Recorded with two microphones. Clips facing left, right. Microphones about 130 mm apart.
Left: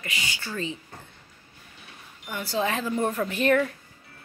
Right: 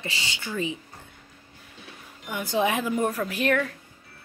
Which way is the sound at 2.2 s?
15° right (ahead or behind).